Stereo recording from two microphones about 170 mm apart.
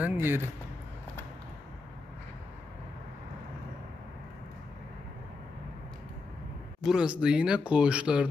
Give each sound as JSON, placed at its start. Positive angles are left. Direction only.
{"t": 0.0, "sound": "speech", "side_deg": -10}
{"t": 6.8, "sound": "speech", "side_deg": -5}